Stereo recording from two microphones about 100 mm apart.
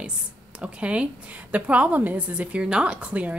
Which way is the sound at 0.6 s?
10° right (ahead or behind).